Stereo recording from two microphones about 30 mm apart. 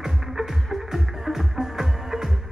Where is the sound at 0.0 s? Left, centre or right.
Centre.